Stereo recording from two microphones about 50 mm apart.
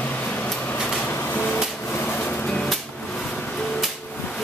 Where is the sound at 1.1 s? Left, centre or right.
Left.